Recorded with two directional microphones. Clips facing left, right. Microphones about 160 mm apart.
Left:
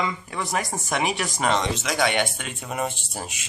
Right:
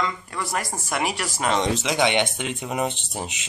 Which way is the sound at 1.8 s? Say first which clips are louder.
Right 2 dB; 20° right (ahead or behind).